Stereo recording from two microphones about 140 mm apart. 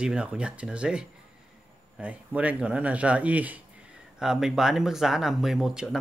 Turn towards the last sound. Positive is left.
turn(degrees=-5)  # may be behind; listen again after turning